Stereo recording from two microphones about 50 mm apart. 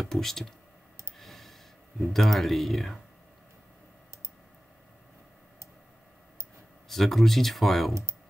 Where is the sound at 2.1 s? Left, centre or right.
Centre.